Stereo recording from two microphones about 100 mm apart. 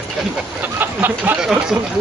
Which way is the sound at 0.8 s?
20° right (ahead or behind).